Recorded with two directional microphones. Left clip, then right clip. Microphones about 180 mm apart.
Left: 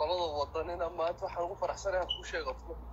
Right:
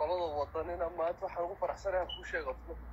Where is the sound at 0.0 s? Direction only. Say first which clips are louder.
Left 1 dB; 10° right (ahead or behind).